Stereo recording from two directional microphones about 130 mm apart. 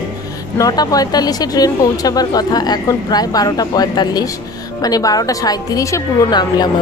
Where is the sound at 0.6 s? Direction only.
30° left (ahead or behind).